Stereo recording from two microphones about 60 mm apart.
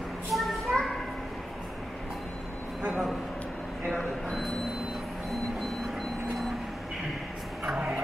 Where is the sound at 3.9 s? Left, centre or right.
Centre.